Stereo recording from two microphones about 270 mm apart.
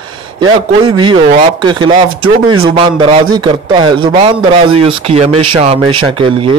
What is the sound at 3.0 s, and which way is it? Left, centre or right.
Speech, centre.